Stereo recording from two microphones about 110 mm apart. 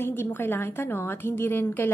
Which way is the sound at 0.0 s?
20° left (ahead or behind).